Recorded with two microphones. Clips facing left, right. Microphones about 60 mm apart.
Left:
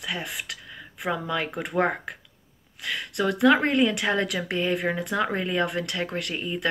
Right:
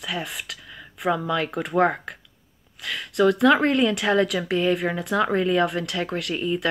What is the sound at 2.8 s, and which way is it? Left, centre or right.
Speech, centre.